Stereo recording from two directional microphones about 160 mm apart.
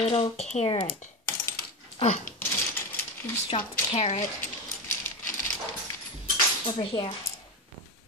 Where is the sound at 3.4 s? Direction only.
35° left (ahead or behind).